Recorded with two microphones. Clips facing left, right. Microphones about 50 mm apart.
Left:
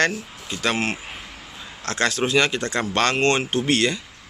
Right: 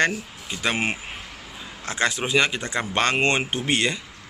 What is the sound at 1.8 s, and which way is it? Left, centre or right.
Speech, centre.